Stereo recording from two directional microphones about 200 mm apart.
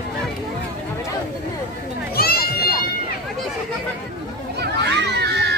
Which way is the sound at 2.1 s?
50° left (ahead or behind).